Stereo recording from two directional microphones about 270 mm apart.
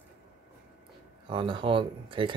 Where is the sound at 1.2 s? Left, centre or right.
Centre.